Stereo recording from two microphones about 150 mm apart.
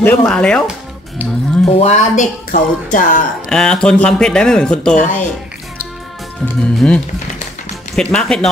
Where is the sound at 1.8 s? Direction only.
50° left (ahead or behind).